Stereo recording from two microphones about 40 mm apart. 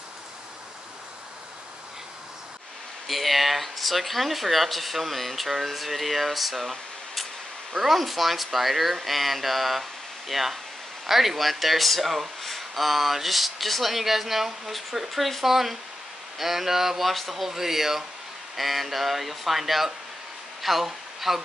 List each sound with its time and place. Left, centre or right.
3.1 s speech: centre